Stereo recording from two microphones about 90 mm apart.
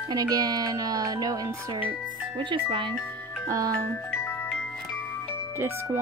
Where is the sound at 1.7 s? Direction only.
60° right (ahead or behind); by 2.9 s 85° right.